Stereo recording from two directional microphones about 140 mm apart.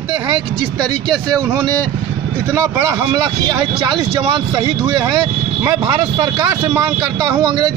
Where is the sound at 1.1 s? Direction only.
30° right (ahead or behind).